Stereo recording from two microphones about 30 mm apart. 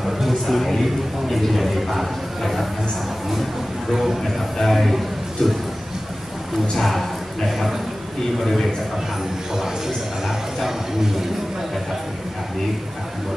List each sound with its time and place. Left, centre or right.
0.0 s a sound: centre
1.4 s speech: centre
3.9 s speech: centre
4.2 s speech: centre
6.7 s speech: centre